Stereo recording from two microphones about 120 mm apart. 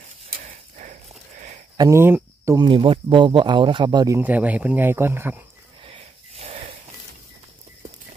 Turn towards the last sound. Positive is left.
turn(degrees=-55)  # may be behind; listen again after turning